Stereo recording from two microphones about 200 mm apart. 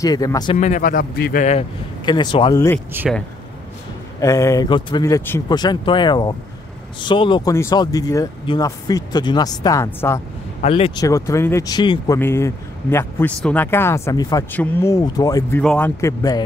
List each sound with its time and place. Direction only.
0.0 s speech: 15° left (ahead or behind)
0.6 s a man's voice: 40° left (ahead or behind)
1.4 s speech: 35° left (ahead or behind)
2.0 s speech: 25° left (ahead or behind)
4.2 s speech: 15° left (ahead or behind)
10.6 s speech: 30° left (ahead or behind)
11.1 s speech: 15° left (ahead or behind)
15.6 s a man's voice: 5° left (ahead or behind)
16.0 s speech: 15° left (ahead or behind)